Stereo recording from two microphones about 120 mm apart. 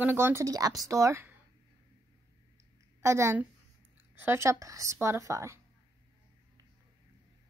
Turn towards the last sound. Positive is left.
turn(degrees=-25)  # may be behind; listen again after turning